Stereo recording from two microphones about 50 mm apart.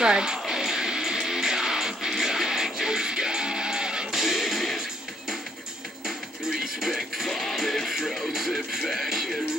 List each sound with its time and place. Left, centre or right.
0.0 s music: centre
4.2 s music: centre
6.0 s music: centre